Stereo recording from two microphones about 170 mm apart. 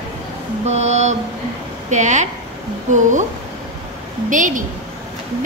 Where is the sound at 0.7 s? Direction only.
40° right (ahead or behind).